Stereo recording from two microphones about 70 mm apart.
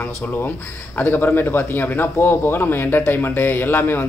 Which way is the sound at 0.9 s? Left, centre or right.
Left.